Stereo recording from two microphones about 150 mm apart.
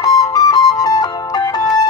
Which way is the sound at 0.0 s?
25° left (ahead or behind).